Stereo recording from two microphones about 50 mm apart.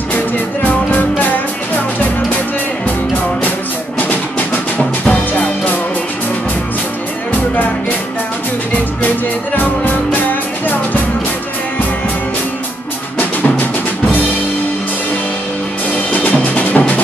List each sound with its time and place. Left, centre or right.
0.7 s music: left
5.0 s music: left
9.6 s music: left
16.1 s music: left